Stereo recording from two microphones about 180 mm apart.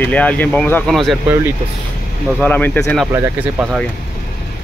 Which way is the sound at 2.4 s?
10° left (ahead or behind).